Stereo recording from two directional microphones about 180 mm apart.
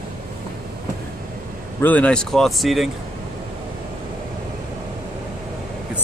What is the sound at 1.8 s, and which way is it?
Speech, 10° left (ahead or behind).